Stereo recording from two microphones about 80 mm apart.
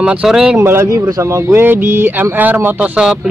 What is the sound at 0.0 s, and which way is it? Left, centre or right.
Speech, centre.